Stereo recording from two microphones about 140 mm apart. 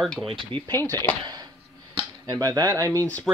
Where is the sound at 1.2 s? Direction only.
30° right (ahead or behind).